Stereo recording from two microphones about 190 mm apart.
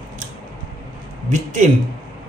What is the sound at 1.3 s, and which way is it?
Speech, 40° right (ahead or behind).